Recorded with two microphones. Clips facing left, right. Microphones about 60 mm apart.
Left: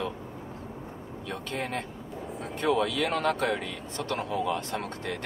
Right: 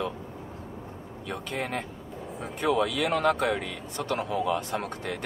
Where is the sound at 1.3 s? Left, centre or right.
Centre.